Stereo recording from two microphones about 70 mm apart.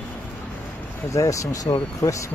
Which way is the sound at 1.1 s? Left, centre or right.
Left.